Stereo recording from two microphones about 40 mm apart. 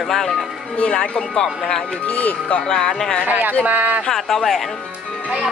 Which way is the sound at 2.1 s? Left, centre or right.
Left.